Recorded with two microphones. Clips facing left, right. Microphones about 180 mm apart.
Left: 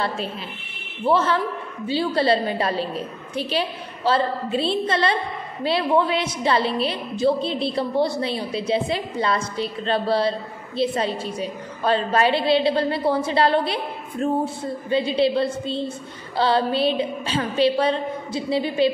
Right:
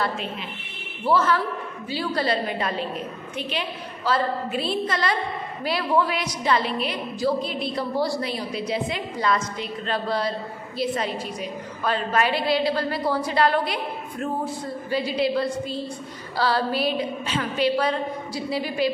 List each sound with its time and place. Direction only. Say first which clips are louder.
1.0 s a woman's voice: left 1 dB; 25° left (ahead or behind)